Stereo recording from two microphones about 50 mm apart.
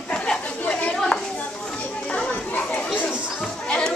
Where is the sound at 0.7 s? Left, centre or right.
Left.